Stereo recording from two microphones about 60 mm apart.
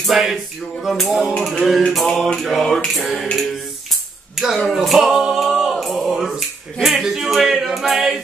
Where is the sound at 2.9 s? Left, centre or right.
Centre.